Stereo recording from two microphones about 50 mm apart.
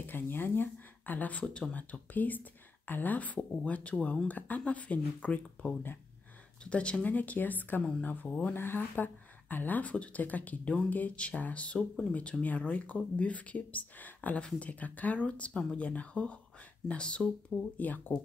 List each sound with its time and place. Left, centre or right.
0.0 s a woman's voice: left
7.1 s a woman's voice: left
8.5 s a woman's voice: left
17.7 s a woman's voice: left